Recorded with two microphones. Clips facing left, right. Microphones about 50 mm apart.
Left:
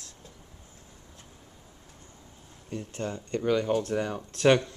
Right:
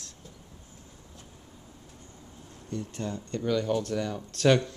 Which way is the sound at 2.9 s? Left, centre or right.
Left.